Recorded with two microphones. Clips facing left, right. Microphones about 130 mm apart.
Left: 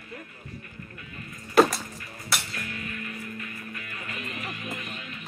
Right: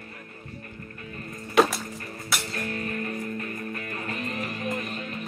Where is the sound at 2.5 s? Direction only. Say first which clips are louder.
Right 6 dB; 40° right (ahead or behind).